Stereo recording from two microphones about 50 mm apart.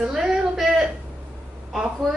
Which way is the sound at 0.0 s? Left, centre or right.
Centre.